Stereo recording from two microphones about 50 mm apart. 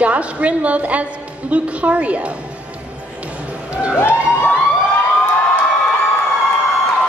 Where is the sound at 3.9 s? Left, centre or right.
Left.